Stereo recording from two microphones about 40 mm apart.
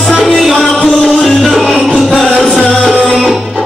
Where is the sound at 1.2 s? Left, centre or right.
Centre.